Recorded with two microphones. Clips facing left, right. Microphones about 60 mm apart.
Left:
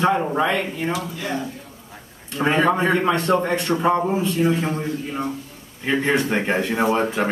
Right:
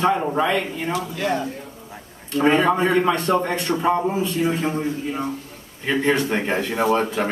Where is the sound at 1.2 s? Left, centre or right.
Right.